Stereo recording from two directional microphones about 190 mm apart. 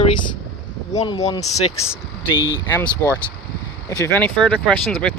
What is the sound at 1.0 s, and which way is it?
Speech, 20° left (ahead or behind).